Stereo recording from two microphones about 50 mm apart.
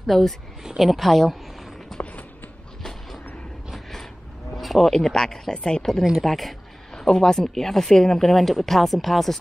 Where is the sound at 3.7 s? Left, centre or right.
Centre.